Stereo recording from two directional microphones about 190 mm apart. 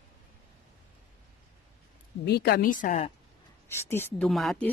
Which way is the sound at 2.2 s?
55° left (ahead or behind).